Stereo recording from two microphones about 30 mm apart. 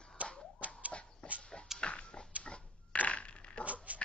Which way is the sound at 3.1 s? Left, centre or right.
Left.